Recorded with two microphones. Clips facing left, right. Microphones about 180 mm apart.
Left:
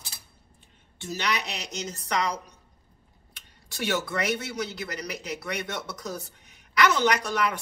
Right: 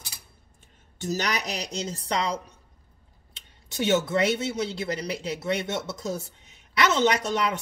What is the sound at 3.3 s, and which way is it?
Speech, 20° right (ahead or behind).